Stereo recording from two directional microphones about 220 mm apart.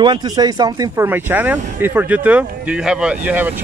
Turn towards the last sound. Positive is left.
turn(degrees=-10)  # may be behind; listen again after turning